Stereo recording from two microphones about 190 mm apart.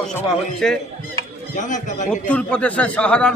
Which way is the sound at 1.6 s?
40° left (ahead or behind).